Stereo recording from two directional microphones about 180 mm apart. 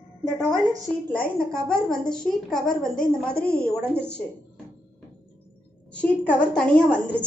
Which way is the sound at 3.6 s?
15° right (ahead or behind).